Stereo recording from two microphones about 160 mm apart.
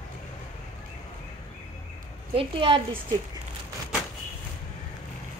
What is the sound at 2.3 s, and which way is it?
Speech, 35° right (ahead or behind).